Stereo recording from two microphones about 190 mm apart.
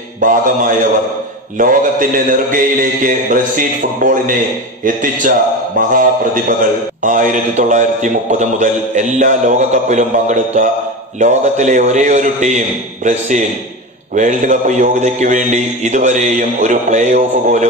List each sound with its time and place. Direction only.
0.2 s mantra: 45° right (ahead or behind)
5.9 s a man's voice: 45° right (ahead or behind)